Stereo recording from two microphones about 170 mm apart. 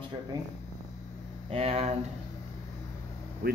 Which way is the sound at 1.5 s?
35° right (ahead or behind).